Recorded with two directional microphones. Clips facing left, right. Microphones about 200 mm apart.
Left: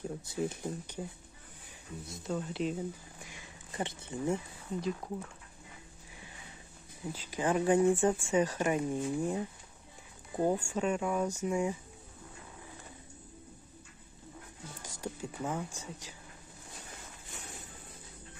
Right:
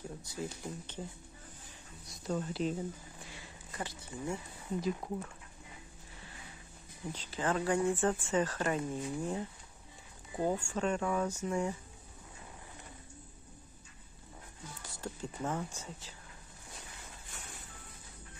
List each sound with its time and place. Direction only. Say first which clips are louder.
0.3 s speech: left 5 dB; 20° left (ahead or behind)
2.0 s speech: even; centre (ahead or behind)
3.2 s a sound: even; 15° left (ahead or behind)
4.7 s speech: even; centre (ahead or behind)
7.1 s speech: left 3 dB; 10° left (ahead or behind)
10.4 s speech: left 2 dB; 10° left (ahead or behind)
15.0 s speech: left 1 dB; 10° left (ahead or behind)